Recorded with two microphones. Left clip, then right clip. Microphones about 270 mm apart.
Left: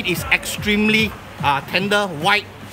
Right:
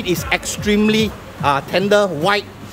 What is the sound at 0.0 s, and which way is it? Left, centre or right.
Speech, centre.